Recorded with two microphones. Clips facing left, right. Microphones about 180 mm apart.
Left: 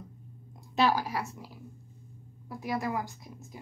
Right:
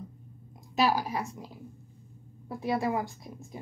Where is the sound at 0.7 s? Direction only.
10° right (ahead or behind).